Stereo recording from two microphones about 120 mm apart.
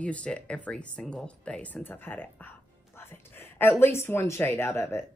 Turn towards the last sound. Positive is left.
turn(degrees=20)  # may be behind; listen again after turning